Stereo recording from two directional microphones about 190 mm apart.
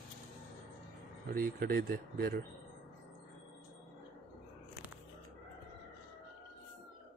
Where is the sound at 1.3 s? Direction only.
50° right (ahead or behind).